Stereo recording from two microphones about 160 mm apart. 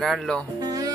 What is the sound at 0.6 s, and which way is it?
Music, 20° right (ahead or behind).